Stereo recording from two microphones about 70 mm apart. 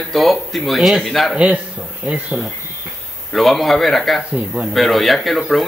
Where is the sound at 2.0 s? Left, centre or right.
Centre.